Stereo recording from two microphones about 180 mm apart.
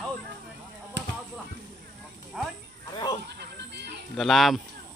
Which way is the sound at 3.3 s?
70° right (ahead or behind).